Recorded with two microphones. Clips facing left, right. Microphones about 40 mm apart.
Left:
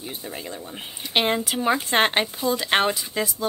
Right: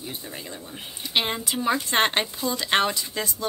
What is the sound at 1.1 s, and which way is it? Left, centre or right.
Speech, centre.